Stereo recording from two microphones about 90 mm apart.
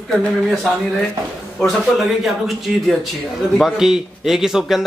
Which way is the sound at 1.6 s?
Centre (ahead or behind).